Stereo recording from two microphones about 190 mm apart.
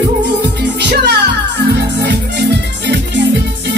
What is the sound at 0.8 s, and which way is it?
Speech, 60° right (ahead or behind).